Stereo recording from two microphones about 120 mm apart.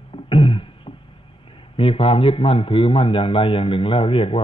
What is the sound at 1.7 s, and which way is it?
Speech, 50° left (ahead or behind).